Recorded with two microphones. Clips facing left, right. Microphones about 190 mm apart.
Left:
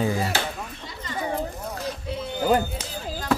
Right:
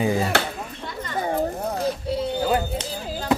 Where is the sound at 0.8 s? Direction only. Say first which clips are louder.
Right 6 dB; 50° right (ahead or behind).